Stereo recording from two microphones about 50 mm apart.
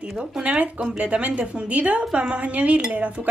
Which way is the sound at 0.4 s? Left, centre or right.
Right.